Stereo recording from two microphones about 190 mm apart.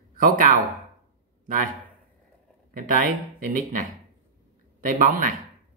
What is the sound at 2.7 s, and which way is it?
Speech, 45° right (ahead or behind).